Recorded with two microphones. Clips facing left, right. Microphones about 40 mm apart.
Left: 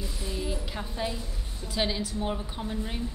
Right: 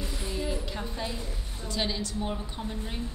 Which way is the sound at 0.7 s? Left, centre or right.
Centre.